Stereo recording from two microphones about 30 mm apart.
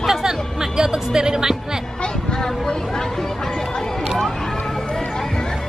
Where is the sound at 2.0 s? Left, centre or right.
Left.